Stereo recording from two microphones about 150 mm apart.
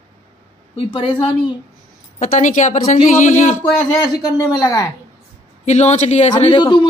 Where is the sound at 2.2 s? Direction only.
55° left (ahead or behind).